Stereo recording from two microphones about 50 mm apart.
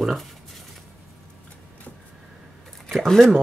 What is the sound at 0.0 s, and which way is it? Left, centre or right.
Speech, centre.